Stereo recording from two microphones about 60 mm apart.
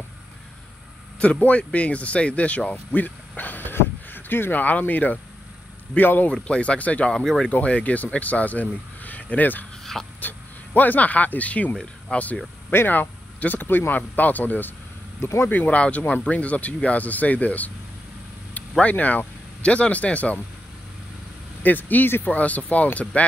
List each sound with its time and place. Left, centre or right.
1.6 s speech: left
6.3 s speech: centre
7.1 s speech: centre
7.5 s speech: left
9.9 s a sound: centre
10.2 s speech: left
11.7 s speech: centre
12.7 s speech: left
15.1 s speech: left
15.5 s speech: left
21.6 s speech: left